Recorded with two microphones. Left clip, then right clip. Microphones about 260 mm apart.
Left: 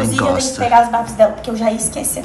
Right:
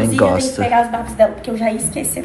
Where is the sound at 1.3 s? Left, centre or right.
Left.